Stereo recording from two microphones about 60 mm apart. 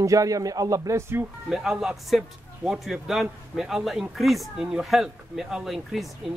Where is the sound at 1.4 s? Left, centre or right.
Centre.